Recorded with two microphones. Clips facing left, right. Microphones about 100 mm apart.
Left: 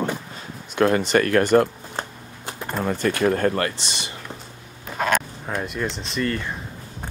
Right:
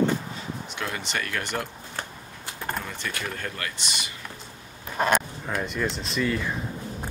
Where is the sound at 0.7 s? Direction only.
50° left (ahead or behind).